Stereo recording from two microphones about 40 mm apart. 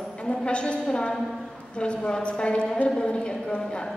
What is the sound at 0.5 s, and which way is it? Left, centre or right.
Speech, left.